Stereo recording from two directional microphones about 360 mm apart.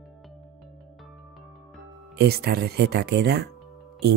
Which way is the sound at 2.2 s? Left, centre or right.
Right.